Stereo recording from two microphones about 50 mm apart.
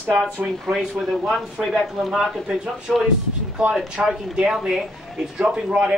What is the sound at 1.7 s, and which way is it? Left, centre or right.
Speech, centre.